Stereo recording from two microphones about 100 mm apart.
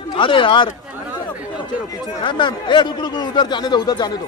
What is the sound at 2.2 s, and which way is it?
Speech, 55° left (ahead or behind).